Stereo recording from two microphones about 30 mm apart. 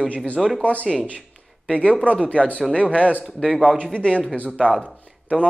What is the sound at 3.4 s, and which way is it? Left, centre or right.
Speech, centre.